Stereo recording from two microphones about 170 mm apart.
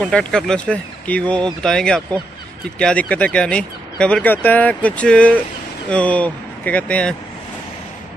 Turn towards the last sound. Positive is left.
turn(degrees=5)  # may be behind; listen again after turning